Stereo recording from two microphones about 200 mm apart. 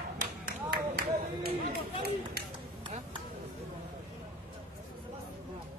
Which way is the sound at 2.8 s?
25° right (ahead or behind).